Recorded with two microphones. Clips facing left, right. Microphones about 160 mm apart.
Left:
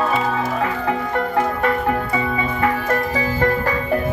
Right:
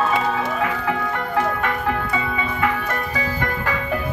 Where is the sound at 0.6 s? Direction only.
35° left (ahead or behind).